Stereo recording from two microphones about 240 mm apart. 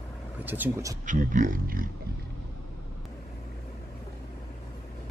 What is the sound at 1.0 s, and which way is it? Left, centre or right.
Speech, right.